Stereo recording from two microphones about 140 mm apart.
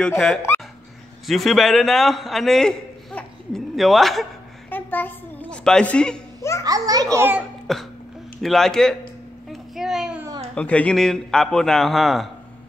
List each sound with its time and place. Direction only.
1.2 s a man's voice: centre (ahead or behind)
4.6 s a sound: 15° left (ahead or behind)
6.6 s a child's voice: 25° right (ahead or behind)
7.7 s a man's voice: 5° left (ahead or behind)
9.5 s a sound: centre (ahead or behind)
10.5 s a man's voice: 10° left (ahead or behind)